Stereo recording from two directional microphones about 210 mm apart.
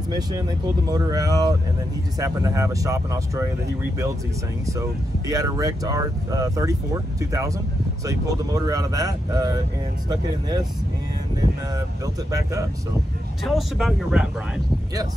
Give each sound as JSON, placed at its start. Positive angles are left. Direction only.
{"t": 0.8, "sound": "speech", "side_deg": -15}
{"t": 5.3, "sound": "speech", "side_deg": -15}
{"t": 12.3, "sound": "speech", "side_deg": -15}
{"t": 13.4, "sound": "speech", "side_deg": 0}